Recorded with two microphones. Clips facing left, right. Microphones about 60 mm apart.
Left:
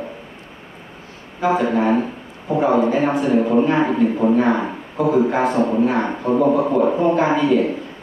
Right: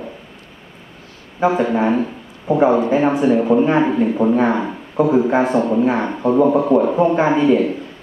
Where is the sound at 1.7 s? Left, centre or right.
Centre.